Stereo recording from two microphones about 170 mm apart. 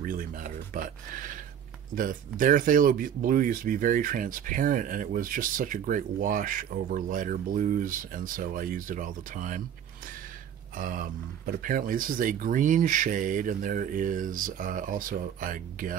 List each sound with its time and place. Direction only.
0.0 s speech: 55° right (ahead or behind)
10.8 s speech: 55° right (ahead or behind)